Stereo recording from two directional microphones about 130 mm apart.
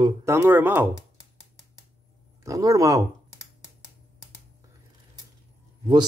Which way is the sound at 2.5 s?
25° right (ahead or behind).